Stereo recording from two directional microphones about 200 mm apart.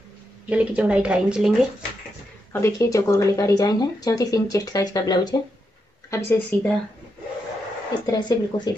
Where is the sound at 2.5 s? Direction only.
15° left (ahead or behind).